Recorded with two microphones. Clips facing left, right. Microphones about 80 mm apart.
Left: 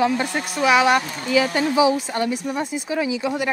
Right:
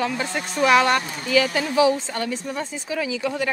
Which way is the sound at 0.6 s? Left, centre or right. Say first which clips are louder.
Left 1 dB; centre.